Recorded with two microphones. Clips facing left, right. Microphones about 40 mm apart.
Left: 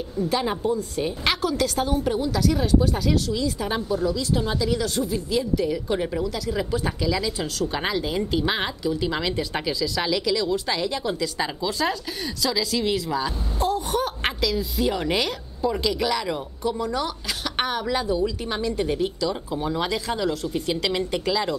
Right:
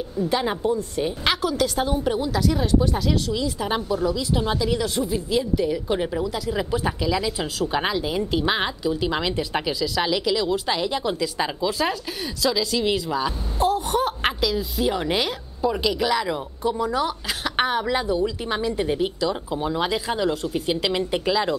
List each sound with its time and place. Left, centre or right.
0.3 s a woman's voice: centre
13.7 s a woman's voice: centre